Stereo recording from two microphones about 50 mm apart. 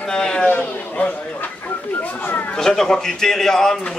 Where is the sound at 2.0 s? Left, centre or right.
Left.